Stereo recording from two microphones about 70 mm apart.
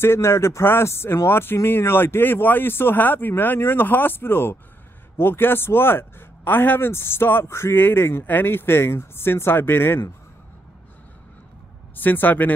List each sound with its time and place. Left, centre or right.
0.0 s speech: left
11.9 s speech: left